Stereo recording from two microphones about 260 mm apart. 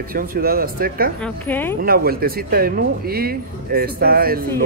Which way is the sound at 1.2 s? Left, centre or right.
Centre.